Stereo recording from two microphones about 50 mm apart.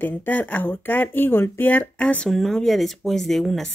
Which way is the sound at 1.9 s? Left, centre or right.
Left.